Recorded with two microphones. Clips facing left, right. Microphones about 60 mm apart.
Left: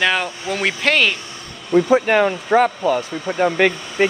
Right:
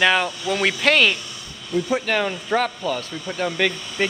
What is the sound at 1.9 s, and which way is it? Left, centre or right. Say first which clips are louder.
Speech: left 5 dB; left.